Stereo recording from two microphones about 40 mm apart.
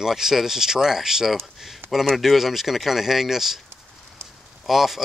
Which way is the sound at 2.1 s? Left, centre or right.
Centre.